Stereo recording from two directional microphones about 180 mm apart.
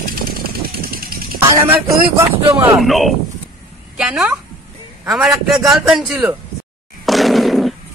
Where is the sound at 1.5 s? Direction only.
15° right (ahead or behind).